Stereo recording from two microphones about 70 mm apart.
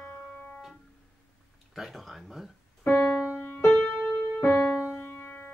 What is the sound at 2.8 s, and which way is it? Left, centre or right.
Keyboard, left.